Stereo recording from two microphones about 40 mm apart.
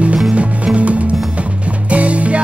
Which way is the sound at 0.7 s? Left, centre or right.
Right.